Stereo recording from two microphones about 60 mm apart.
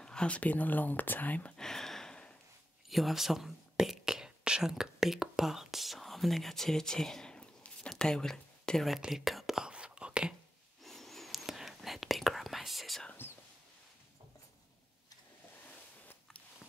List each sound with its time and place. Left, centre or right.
0.0 s speech: centre
1.6 s a sound: centre
2.9 s whispering: centre
7.9 s speech: centre
8.9 s speech: centre
9.7 s whispering: centre
10.8 s whispering: centre
13.2 s whispering: left